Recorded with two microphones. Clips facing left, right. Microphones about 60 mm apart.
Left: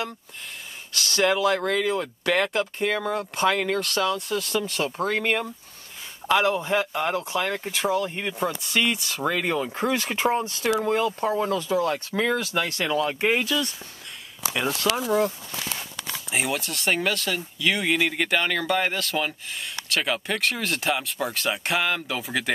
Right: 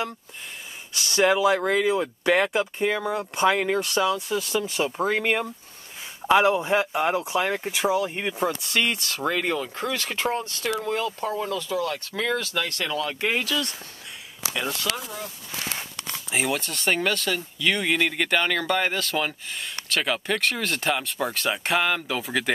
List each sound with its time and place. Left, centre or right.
0.9 s speech: centre
9.7 s speech: centre
11.2 s speech: left; by 14.9 s centre
16.3 s speech: centre